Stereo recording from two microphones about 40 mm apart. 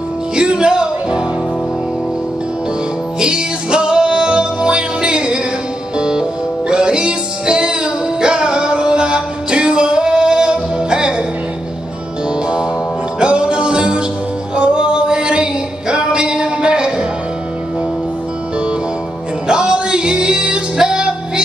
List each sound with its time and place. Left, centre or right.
0.4 s music: right
3.2 s music: right
13.2 s music: right
19.4 s music: centre